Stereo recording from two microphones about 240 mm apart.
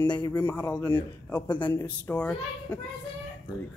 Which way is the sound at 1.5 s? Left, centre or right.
Centre.